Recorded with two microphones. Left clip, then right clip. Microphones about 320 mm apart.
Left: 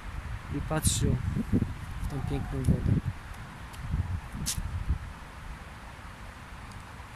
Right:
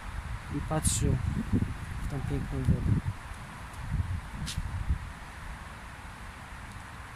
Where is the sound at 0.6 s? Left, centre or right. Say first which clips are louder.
Left 1 dB; centre.